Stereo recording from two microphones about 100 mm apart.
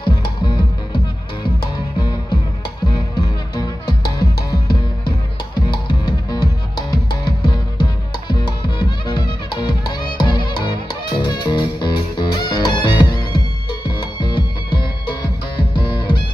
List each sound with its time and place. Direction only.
0.0 s music: 50° left (ahead or behind)